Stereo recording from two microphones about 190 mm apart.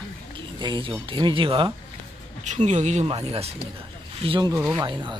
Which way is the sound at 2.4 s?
40° right (ahead or behind).